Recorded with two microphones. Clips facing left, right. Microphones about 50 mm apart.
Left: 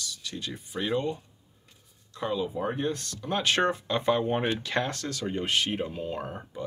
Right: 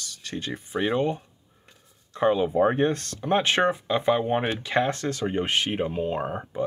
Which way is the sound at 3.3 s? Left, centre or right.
Right.